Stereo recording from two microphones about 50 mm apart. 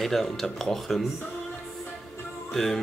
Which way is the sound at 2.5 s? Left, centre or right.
Centre.